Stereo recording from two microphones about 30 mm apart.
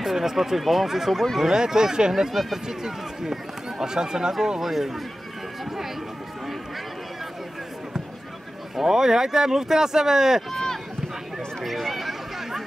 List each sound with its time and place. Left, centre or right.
0.0 s speech: centre
1.5 s speech: right
2.4 s speech: centre
4.6 s speech: centre
8.7 s speech: centre
11.6 s a sound: centre